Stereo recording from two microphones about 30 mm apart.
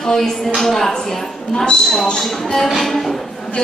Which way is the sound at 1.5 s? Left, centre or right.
Left.